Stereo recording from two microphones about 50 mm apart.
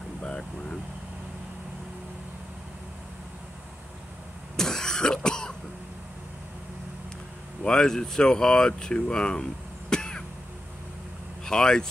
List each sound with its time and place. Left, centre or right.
0.2 s air conditioning: centre
4.6 s throat clearing: centre
7.6 s speech: centre
11.4 s speech: centre